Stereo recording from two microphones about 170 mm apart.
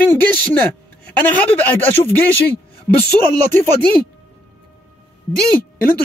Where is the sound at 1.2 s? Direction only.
10° left (ahead or behind).